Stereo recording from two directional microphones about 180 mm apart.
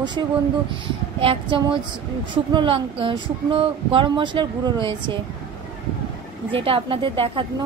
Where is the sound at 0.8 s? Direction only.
30° right (ahead or behind).